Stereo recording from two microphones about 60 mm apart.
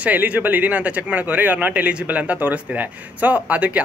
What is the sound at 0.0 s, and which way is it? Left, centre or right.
Speech, right.